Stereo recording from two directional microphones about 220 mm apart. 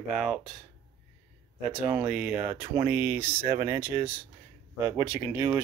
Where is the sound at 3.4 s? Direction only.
25° right (ahead or behind).